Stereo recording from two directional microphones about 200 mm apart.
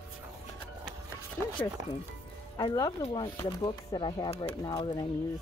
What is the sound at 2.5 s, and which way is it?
Speech, 20° left (ahead or behind).